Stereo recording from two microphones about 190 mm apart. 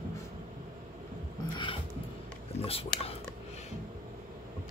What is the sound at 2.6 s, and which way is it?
Speech, 30° left (ahead or behind).